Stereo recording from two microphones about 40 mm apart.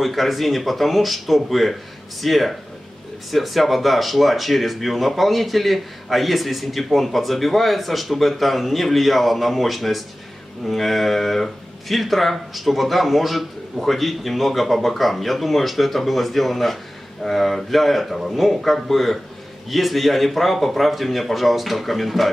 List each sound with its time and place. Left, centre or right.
0.0 s speech: centre